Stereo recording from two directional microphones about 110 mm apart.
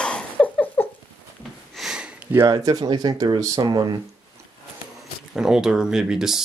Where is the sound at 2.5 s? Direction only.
35° right (ahead or behind).